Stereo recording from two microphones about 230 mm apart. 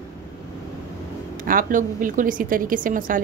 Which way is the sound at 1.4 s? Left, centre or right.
Right.